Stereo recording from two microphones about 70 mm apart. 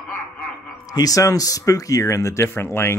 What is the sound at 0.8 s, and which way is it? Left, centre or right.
Speech, left.